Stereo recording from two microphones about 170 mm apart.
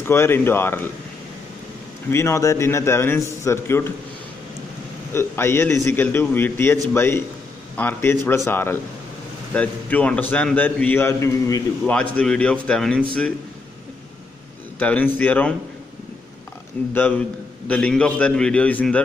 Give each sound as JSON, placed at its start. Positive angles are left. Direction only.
{"t": 0.0, "sound": "a man's voice", "side_deg": 15}
{"t": 2.0, "sound": "a man's voice", "side_deg": 15}
{"t": 5.1, "sound": "a man's voice", "side_deg": 15}
{"t": 11.8, "sound": "a man's voice", "side_deg": 5}
{"t": 14.8, "sound": "a man's voice", "side_deg": 10}
{"t": 16.9, "sound": "a man's voice", "side_deg": 10}